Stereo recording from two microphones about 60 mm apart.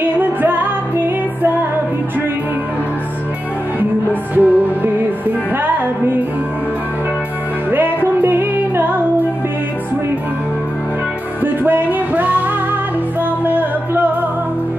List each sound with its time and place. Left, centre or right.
0.0 s music: right
4.4 s music: right
7.7 s music: right
11.4 s music: right
13.5 s music: right